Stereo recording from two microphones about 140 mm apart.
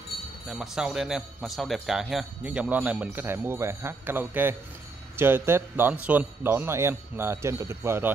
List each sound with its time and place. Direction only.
0.5 s a man's voice: 5° right (ahead or behind)